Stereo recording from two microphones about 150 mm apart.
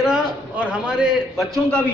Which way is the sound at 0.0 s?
5° right (ahead or behind).